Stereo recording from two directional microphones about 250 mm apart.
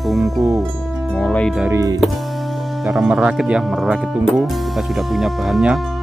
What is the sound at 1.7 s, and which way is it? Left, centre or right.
Speech, centre.